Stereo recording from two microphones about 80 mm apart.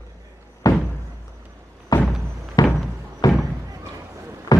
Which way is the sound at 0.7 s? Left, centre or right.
Left.